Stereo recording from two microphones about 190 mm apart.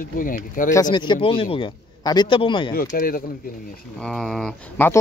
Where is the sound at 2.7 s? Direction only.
50° left (ahead or behind).